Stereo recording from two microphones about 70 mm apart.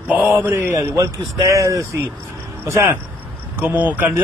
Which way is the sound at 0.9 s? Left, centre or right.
Right.